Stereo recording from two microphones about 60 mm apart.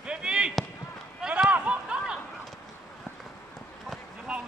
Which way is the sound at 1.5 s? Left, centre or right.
Centre.